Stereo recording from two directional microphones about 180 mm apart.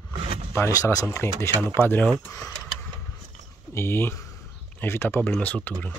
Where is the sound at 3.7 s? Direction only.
15° left (ahead or behind).